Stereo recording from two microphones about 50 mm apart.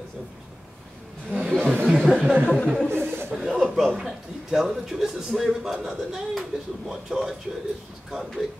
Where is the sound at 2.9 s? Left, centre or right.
Right.